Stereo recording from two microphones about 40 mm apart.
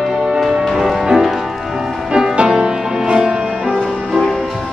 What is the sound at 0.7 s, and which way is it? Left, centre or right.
Music, centre.